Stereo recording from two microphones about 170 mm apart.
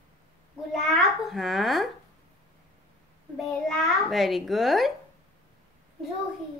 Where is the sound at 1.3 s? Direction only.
Centre (ahead or behind).